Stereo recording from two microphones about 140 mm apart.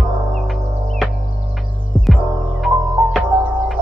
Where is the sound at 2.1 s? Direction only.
Centre (ahead or behind).